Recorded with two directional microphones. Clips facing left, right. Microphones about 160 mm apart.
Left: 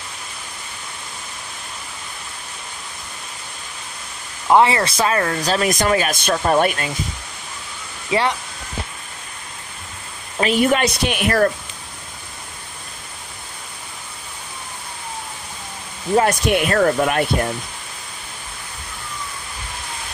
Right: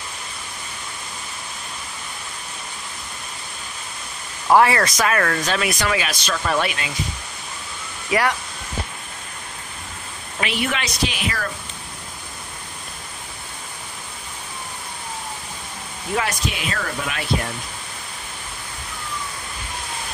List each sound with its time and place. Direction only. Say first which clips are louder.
4.5 s speech: left 1 dB; 20° left (ahead or behind)
5.4 s speech: left 4 dB; 35° left (ahead or behind)
6.3 s speech: left 5 dB; 35° left (ahead or behind)
6.6 s speech: left 6 dB; 45° left (ahead or behind)
8.1 s speech: left 1 dB; 25° left (ahead or behind)
10.4 s speech: left 8 dB; 45° left (ahead or behind)
16.2 s speech: left 9 dB; 50° left (ahead or behind)